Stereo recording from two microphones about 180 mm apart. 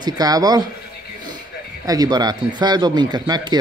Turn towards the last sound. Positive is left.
turn(degrees=-25)  # may be behind; listen again after turning